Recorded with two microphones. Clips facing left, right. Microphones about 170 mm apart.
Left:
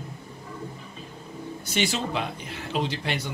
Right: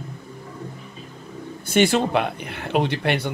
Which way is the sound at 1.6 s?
55° right (ahead or behind).